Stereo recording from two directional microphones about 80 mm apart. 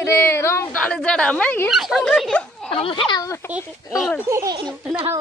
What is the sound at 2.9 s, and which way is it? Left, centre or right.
Speech, left.